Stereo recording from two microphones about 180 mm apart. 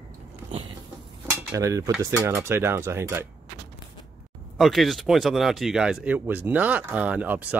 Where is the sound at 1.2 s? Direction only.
15° right (ahead or behind).